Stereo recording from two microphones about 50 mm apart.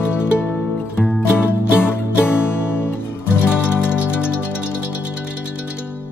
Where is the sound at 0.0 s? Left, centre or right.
Left.